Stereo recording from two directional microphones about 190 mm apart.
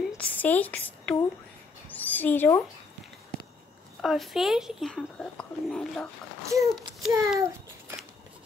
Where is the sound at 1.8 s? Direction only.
10° left (ahead or behind).